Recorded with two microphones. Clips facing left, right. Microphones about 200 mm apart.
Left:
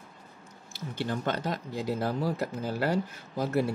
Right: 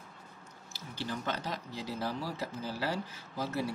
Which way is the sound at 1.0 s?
55° left (ahead or behind).